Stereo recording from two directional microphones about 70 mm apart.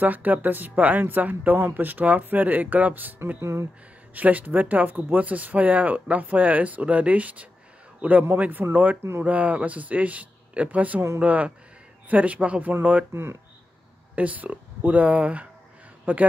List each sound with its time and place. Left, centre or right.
0.0 s speech: right
3.3 s speech: right
4.1 s speech: right
13.1 s speech: right
14.1 s speech: right